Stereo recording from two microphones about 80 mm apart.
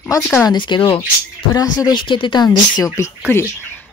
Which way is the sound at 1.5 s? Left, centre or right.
Left.